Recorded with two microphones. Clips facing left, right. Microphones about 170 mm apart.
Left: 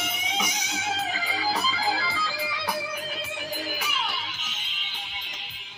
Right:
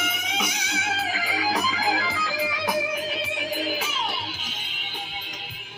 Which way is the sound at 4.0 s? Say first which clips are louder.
Right 2 dB; 35° right (ahead or behind).